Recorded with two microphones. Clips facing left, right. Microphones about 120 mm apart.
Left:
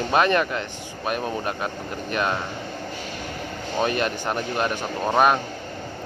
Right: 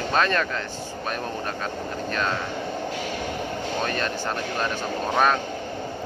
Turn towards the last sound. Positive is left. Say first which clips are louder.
# left 2 dB
turn(degrees=15)  # may be behind; listen again after turning